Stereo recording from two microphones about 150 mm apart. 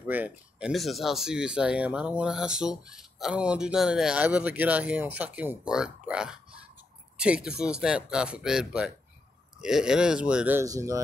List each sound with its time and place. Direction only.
0.0 s speech: 10° right (ahead or behind)
10.6 s speech: 20° right (ahead or behind)